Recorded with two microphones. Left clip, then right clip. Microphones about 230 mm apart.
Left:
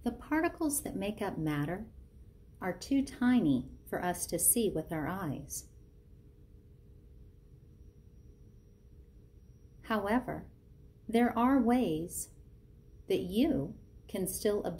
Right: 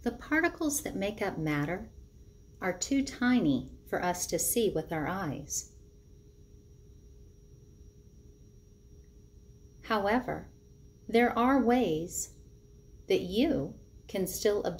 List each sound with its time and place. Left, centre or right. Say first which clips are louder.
0.0 s speech: right 3 dB; centre
9.8 s a woman's voice: right 4 dB; left
13.0 s speech: right 3 dB; left